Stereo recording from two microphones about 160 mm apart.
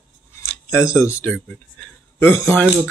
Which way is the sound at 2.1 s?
15° left (ahead or behind).